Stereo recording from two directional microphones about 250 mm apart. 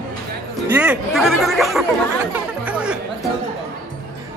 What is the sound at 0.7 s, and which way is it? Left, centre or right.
Speech, centre.